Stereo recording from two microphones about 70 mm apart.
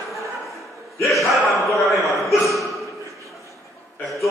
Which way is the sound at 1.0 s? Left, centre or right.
Centre.